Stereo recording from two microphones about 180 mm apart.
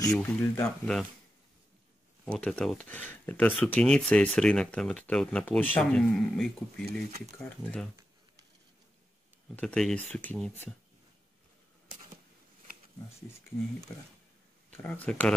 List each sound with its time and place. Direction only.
0.1 s speech: 5° left (ahead or behind)
2.3 s speech: 5° left (ahead or behind)
6.9 s speech: 60° right (ahead or behind)
7.4 s speech: 5° left (ahead or behind)
9.6 s speech: 5° left (ahead or behind)
14.7 s speech: 10° left (ahead or behind)